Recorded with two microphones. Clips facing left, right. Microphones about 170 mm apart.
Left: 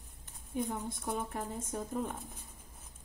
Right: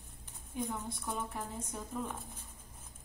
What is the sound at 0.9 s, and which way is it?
Speech, 45° left (ahead or behind).